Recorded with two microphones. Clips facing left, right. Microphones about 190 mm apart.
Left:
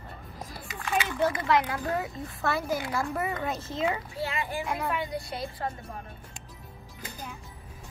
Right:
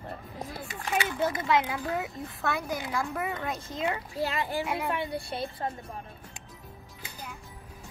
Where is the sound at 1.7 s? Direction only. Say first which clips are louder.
Left 1 dB; centre (ahead or behind).